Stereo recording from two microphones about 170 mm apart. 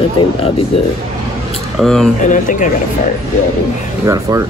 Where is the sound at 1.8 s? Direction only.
Centre (ahead or behind).